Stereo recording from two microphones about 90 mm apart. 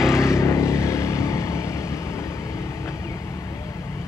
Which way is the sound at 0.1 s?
30° left (ahead or behind).